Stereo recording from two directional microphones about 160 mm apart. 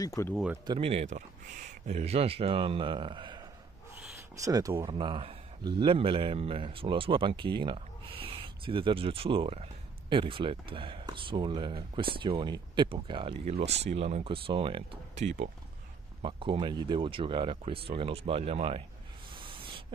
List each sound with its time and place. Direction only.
0.0 s speech: 20° left (ahead or behind)
0.7 s speech: 35° right (ahead or behind)
4.5 s speech: 20° right (ahead or behind)
4.8 s speech: 30° right (ahead or behind)
15.1 s speech: 45° right (ahead or behind)
16.2 s speech: 30° right (ahead or behind)
19.3 s a sound: 35° right (ahead or behind)